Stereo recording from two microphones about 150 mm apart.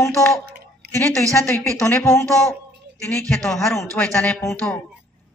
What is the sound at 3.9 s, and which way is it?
Speech, 10° left (ahead or behind).